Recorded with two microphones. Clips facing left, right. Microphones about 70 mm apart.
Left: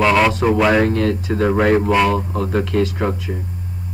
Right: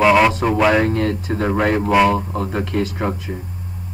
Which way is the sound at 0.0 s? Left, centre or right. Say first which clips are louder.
Right 1 dB; centre.